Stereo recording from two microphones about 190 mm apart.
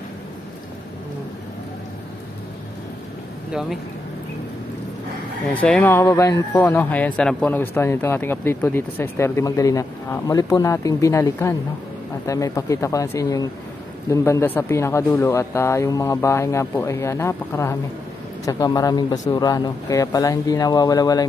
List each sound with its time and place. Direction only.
5.5 s speech: 5° left (ahead or behind)